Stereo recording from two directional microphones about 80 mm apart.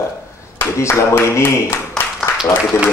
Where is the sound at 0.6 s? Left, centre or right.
Left.